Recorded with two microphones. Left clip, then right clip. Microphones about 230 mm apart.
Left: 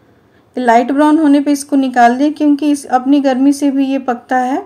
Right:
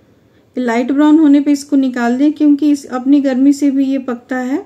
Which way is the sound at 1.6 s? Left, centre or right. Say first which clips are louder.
Even; left.